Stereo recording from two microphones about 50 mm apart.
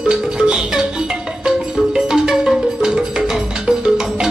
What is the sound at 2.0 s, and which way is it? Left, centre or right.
Music, centre.